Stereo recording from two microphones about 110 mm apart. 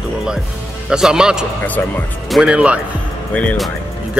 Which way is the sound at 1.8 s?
20° left (ahead or behind).